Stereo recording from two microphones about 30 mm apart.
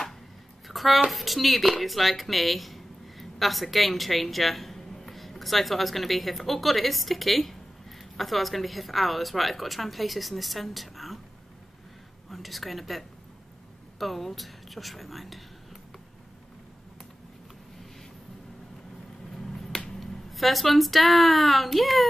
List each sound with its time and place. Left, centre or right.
0.7 s a sound: centre
1.1 s a woman's voice: centre
12.3 s a woman's voice: centre
19.3 s finger snapping: centre
19.9 s speech: centre